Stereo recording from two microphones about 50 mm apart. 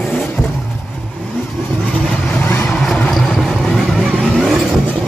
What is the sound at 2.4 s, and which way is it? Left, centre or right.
Vehicle, left.